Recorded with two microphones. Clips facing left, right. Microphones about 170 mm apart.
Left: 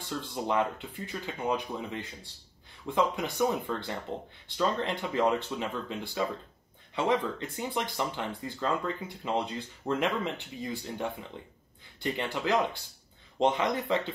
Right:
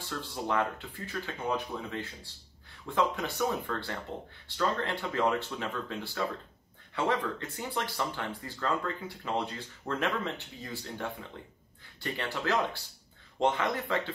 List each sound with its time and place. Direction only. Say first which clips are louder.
0.1 s speech: left 2 dB; 15° left (ahead or behind)